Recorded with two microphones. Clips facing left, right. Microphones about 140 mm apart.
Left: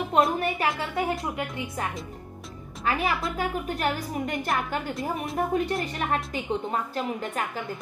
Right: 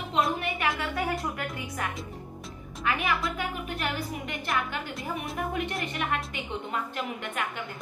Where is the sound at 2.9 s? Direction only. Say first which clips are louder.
Left 2 dB; 35° left (ahead or behind).